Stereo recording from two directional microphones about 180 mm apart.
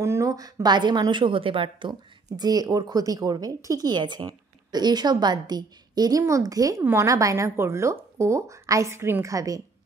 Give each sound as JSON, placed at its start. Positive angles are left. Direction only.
{"t": 0.0, "sound": "a woman's voice", "side_deg": -15}